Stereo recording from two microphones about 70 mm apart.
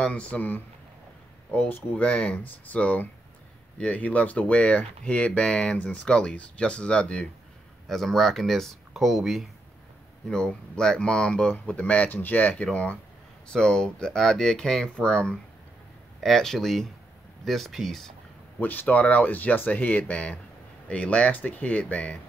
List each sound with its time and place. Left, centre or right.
0.0 s speech: centre
7.9 s speech: centre
10.2 s speech: centre
11.5 s speech: left
13.5 s speech: centre
18.6 s speech: left